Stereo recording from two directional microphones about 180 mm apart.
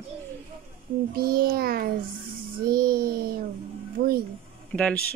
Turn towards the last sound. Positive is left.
turn(degrees=5)  # may be behind; listen again after turning